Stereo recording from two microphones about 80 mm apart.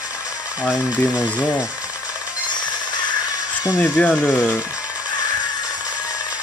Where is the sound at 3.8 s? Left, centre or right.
Centre.